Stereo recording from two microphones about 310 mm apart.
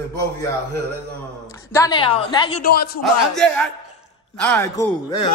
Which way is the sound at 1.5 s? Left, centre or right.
Centre.